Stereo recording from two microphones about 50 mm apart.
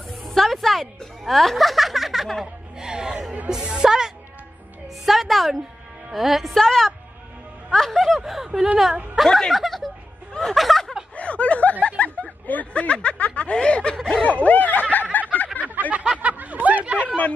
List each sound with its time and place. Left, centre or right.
0.1 s music: centre
2.4 s music: centre
5.0 s a woman's voice: centre
6.6 s a woman's voice: centre
8.2 s speech: centre
9.1 s speech: centre
11.1 s a sound: left
12.4 s a woman's voice: left; by 14.2 s centre
14.2 s snicker: left
15.3 s a sound: left
15.6 s a sound: right